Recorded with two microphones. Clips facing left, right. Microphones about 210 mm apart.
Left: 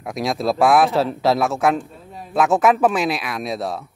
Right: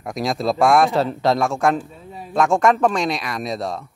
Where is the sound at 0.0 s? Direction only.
Centre (ahead or behind).